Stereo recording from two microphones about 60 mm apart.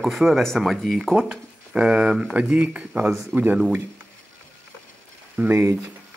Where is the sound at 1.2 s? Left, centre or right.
Centre.